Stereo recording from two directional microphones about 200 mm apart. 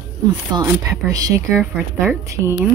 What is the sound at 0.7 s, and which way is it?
Speech, 15° right (ahead or behind).